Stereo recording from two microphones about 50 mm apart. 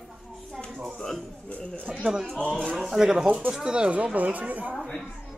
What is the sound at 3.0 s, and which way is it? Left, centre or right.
Speech, centre.